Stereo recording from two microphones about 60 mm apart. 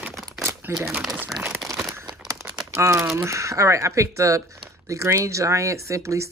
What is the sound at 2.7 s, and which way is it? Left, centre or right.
Speech, right.